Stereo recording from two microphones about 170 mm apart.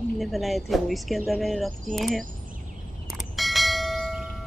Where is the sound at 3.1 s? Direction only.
Centre (ahead or behind).